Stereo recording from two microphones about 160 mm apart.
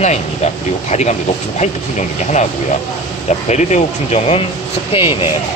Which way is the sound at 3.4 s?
45° left (ahead or behind).